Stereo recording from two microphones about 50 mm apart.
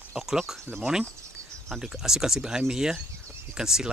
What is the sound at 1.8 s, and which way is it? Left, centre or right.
Speech, centre.